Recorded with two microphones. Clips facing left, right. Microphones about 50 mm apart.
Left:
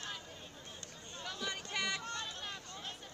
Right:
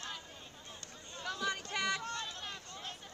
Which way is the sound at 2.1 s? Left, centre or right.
Left.